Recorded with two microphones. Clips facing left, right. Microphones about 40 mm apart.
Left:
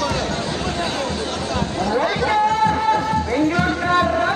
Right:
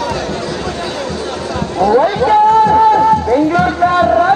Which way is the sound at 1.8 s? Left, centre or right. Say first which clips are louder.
Right 10 dB; right.